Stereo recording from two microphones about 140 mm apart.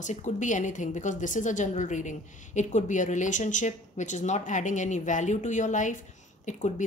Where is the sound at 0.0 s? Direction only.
60° left (ahead or behind).